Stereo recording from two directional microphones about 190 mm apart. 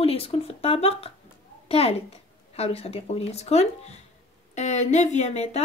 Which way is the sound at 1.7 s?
30° left (ahead or behind).